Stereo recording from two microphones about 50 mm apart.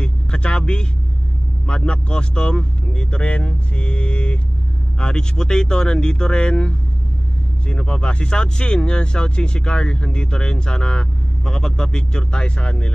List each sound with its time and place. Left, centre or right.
0.0 s speech: left